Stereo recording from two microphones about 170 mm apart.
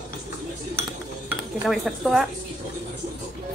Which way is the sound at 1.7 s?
Centre (ahead or behind).